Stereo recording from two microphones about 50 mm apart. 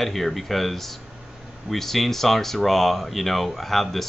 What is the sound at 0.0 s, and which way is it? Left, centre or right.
Speech, centre.